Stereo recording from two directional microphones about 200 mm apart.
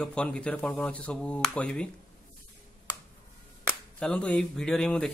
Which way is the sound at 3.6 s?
5° left (ahead or behind).